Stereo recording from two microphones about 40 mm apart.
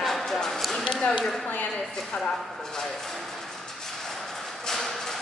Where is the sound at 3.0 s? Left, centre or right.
Centre.